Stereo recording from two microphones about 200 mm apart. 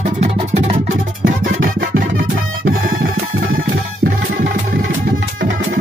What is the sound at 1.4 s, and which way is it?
Music, 70° right (ahead or behind).